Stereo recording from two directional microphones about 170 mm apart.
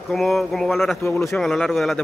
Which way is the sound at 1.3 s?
5° left (ahead or behind).